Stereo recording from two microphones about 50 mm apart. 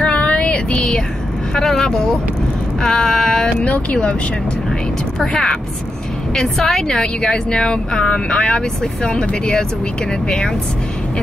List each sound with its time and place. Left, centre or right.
0.0 s a sound: left
1.5 s a woman's voice: centre
3.6 s speech: left
5.2 s a woman's voice: centre